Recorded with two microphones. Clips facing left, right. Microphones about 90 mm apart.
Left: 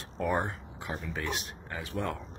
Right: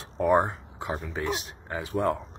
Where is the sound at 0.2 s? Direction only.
35° right (ahead or behind).